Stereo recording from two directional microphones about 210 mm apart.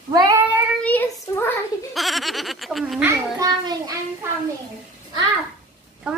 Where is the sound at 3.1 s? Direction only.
15° right (ahead or behind).